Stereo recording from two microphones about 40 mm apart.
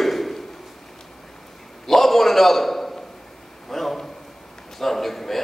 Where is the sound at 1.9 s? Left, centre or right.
Centre.